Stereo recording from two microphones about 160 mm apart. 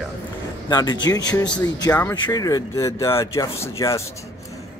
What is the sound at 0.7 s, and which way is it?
Speech, 25° left (ahead or behind).